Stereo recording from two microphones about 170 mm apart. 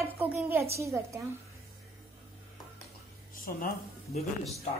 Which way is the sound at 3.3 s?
55° left (ahead or behind).